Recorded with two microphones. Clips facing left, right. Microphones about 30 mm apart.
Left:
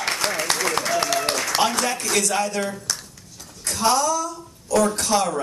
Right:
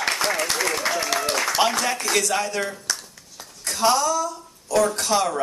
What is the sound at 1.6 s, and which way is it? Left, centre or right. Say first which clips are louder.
Speech: left 1 dB; centre.